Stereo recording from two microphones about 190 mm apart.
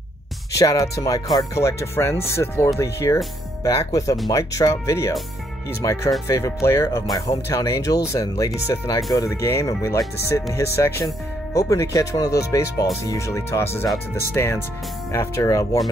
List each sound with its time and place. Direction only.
0.5 s speech: 15° left (ahead or behind)